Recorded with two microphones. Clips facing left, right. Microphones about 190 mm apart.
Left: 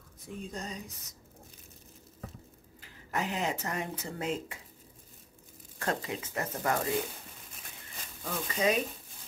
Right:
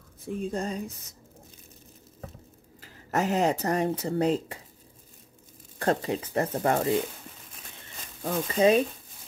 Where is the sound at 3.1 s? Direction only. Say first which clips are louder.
Right 8 dB; 45° right (ahead or behind).